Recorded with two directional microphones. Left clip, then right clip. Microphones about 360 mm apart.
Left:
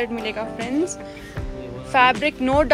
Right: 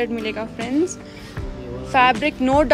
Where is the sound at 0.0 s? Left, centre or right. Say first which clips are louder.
Right 1 dB; centre.